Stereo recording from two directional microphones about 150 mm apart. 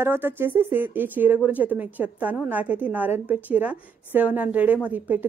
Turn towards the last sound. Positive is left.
turn(degrees=-10)  # may be behind; listen again after turning